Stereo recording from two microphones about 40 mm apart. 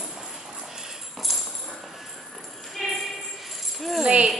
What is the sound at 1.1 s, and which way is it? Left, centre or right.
Tambourine, centre.